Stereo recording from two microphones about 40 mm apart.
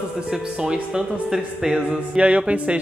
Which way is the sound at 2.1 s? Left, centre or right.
Right.